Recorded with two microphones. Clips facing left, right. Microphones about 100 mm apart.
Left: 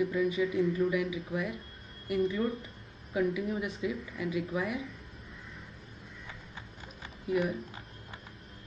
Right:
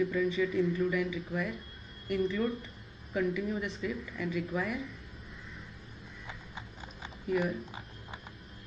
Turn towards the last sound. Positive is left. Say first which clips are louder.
# left 1 dB
turn(degrees=0)  # may be behind; listen again after turning